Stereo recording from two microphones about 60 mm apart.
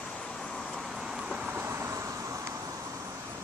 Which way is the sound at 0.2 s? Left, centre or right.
Centre.